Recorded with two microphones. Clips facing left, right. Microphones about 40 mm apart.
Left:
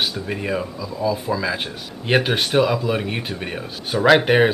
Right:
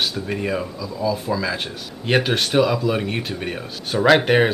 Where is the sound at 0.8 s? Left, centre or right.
Centre.